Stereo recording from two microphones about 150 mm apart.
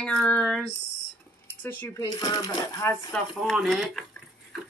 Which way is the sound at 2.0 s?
25° left (ahead or behind).